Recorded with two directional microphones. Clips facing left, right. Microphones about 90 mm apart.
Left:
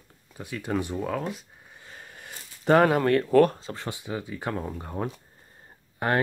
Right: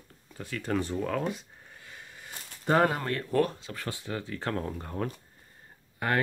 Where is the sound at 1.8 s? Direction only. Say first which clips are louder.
Left 3 dB; 40° left (ahead or behind); by 3.5 s 80° left.